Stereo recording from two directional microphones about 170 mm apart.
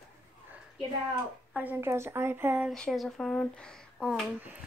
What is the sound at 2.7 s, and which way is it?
A woman's voice, centre (ahead or behind).